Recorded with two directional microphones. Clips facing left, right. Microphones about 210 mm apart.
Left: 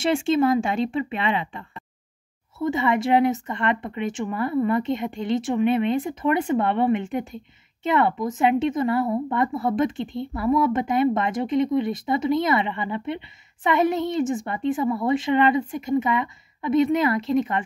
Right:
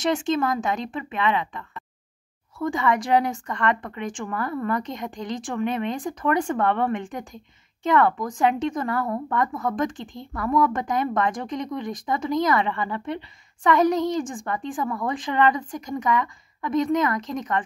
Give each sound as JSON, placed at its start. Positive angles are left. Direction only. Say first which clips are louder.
{"t": 0.0, "sound": "speech", "louder": "left 3 dB", "side_deg": 25}